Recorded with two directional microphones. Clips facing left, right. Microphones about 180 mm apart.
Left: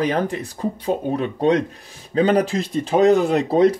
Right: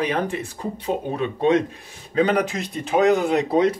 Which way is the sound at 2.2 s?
30° left (ahead or behind).